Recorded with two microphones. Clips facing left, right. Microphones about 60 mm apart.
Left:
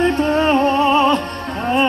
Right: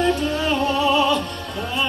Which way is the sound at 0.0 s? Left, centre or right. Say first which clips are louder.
Left 5 dB; left.